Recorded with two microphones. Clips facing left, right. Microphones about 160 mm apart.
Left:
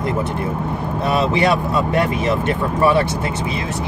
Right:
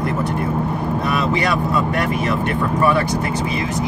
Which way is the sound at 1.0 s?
25° left (ahead or behind).